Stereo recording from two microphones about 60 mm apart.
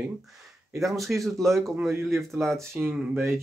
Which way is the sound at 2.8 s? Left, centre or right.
Centre.